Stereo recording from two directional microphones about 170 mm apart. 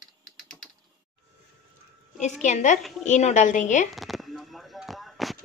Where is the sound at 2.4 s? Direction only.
45° left (ahead or behind).